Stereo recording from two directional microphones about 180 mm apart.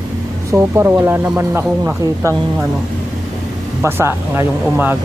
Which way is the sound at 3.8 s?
15° right (ahead or behind).